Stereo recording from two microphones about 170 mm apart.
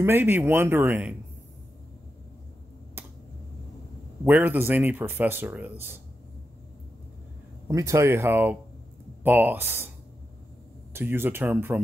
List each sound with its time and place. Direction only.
0.0 s speech: 15° right (ahead or behind)
4.2 s speech: 10° right (ahead or behind)
7.6 s speech: 15° right (ahead or behind)
10.9 s speech: 15° right (ahead or behind)